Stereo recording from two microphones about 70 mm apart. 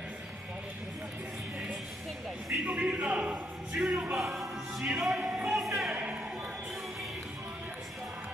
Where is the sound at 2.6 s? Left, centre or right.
Centre.